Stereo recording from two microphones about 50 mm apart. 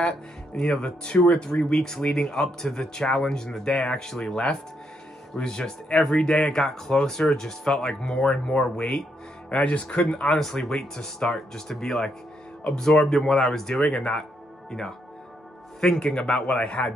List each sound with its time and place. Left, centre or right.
0.6 s speech: centre
10.2 s speech: centre
13.8 s speech: centre
16.0 s speech: centre